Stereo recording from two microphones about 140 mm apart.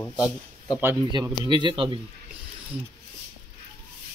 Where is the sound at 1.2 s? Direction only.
30° right (ahead or behind).